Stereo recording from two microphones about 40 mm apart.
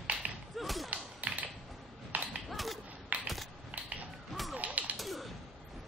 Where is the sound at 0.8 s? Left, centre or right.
Right.